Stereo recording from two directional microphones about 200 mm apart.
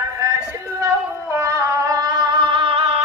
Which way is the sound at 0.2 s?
15° right (ahead or behind).